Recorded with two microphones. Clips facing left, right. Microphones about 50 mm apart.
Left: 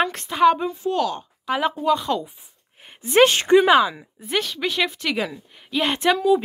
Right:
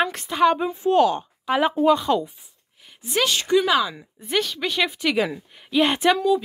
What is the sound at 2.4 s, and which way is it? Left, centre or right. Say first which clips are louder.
Speech: left 3 dB; left.